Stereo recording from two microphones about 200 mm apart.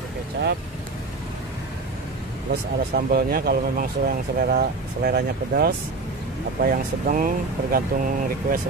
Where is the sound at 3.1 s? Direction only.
50° right (ahead or behind).